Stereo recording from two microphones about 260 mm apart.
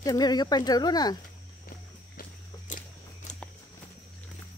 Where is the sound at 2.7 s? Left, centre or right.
Left.